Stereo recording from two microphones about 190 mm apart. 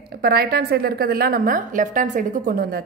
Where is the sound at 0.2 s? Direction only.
55° right (ahead or behind).